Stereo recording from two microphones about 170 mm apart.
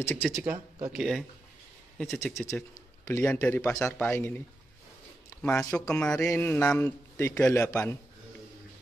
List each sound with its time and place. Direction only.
0.2 s speech: 5° right (ahead or behind)
2.0 s a man's voice: 10° left (ahead or behind)
5.4 s a man's voice: 5° left (ahead or behind)